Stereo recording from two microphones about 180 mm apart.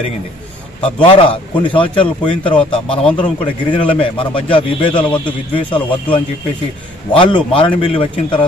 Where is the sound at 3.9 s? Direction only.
30° left (ahead or behind).